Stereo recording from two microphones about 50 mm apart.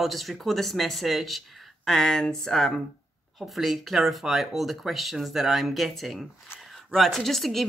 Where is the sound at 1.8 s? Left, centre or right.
Centre.